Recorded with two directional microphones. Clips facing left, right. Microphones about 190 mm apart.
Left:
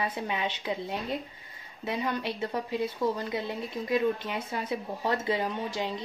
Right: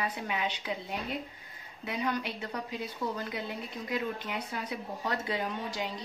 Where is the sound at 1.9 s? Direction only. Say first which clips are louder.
Left 2 dB; 30° left (ahead or behind).